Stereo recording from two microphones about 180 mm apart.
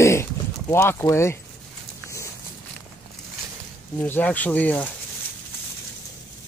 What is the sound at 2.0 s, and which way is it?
Horse, 15° left (ahead or behind).